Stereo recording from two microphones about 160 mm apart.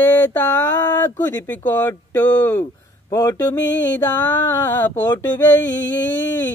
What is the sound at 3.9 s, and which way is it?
Speech, 10° left (ahead or behind).